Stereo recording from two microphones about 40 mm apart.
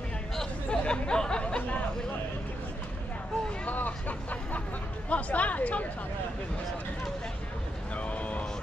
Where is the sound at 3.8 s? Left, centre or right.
Left.